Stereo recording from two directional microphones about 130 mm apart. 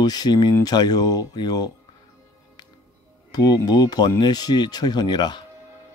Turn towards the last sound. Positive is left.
turn(degrees=35)  # may be behind; listen again after turning